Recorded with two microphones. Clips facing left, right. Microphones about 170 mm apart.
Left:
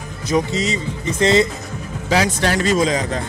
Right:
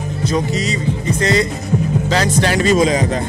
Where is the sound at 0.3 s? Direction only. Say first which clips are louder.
Left 2 dB; 25° left (ahead or behind).